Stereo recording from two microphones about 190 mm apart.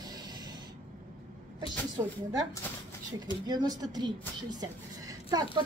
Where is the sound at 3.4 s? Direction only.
20° right (ahead or behind).